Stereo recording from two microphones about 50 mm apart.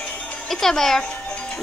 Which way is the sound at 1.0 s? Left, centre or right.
Centre.